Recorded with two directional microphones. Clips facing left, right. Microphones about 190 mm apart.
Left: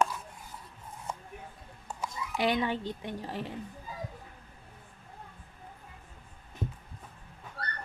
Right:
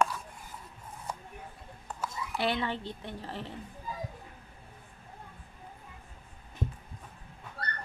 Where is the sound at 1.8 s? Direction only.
15° left (ahead or behind).